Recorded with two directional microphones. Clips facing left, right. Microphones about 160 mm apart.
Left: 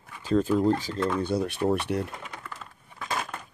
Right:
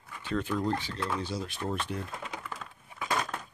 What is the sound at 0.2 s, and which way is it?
Speech, 40° left (ahead or behind).